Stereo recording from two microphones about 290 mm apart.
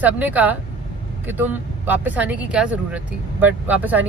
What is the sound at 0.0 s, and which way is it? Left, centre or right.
Speech, centre.